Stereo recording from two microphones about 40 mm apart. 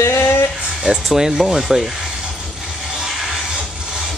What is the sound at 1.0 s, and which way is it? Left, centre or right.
Speech, centre.